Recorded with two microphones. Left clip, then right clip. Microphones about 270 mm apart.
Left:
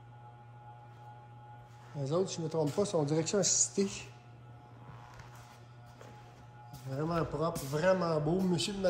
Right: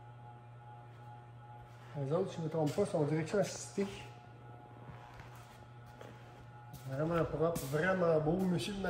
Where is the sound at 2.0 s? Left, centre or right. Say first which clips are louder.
Left 3 dB; centre.